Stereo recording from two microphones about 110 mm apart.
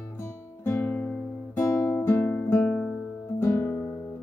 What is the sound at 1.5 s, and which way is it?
Music, 25° left (ahead or behind).